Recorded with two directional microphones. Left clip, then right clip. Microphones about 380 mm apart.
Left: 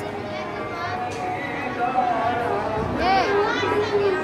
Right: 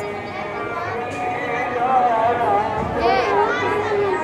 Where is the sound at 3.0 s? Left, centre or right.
Centre.